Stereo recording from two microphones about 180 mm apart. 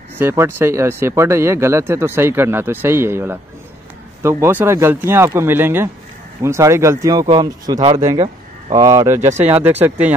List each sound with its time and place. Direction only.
0.2 s speech: 15° right (ahead or behind)